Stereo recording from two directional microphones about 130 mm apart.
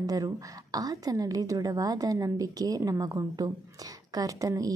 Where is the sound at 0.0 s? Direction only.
30° right (ahead or behind).